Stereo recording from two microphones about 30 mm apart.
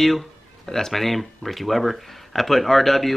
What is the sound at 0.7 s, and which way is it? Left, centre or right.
Speech, centre.